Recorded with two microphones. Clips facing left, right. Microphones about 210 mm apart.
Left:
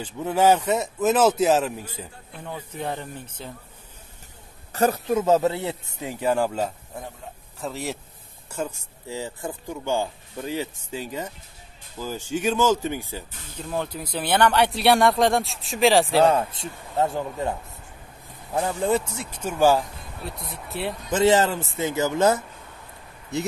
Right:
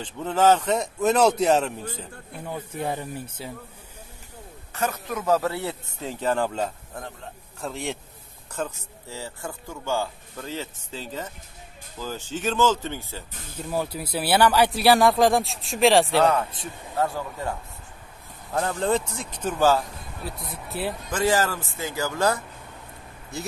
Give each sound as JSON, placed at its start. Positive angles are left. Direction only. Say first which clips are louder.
{"t": 0.0, "sound": "speech", "louder": "left 1 dB", "side_deg": 10}
{"t": 2.4, "sound": "speech", "louder": "right 1 dB", "side_deg": -10}
{"t": 4.7, "sound": "speech", "louder": "left 7 dB", "side_deg": 35}
{"t": 13.6, "sound": "speech", "louder": "right 1 dB", "side_deg": -5}
{"t": 16.2, "sound": "speech", "louder": "left 2 dB", "side_deg": 30}
{"t": 18.5, "sound": "speech", "louder": "left 1 dB", "side_deg": 10}
{"t": 20.2, "sound": "speech", "louder": "even", "side_deg": 0}
{"t": 21.1, "sound": "speech", "louder": "left 5 dB", "side_deg": 25}